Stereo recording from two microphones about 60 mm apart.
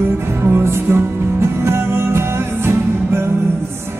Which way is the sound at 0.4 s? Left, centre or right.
Right.